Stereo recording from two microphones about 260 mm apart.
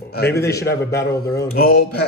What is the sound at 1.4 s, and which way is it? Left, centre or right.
Speech, left.